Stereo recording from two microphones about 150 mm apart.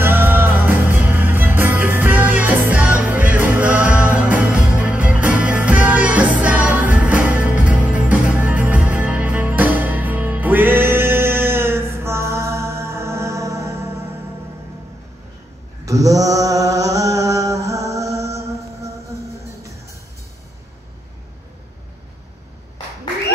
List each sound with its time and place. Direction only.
0.0 s music: 15° right (ahead or behind)
15.8 s mantra: 20° right (ahead or behind)